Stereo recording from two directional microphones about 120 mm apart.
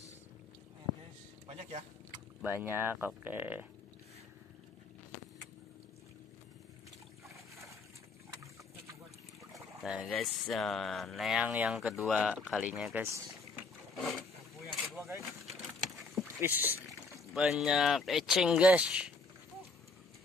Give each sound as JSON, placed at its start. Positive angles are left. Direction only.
{"t": 1.5, "sound": "vehicle", "side_deg": -60}
{"t": 2.4, "sound": "speech", "side_deg": -20}
{"t": 9.8, "sound": "speech", "side_deg": -5}
{"t": 12.9, "sound": "speech", "side_deg": -15}
{"t": 13.9, "sound": "speech", "side_deg": 0}
{"t": 14.7, "sound": "a sound", "side_deg": 0}
{"t": 16.2, "sound": "a sound", "side_deg": -15}
{"t": 17.3, "sound": "speech", "side_deg": 0}